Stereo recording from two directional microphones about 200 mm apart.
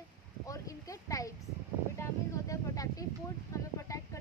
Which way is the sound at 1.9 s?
15° left (ahead or behind).